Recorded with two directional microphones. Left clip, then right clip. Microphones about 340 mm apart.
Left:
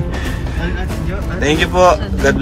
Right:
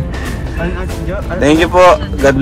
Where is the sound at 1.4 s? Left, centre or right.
Centre.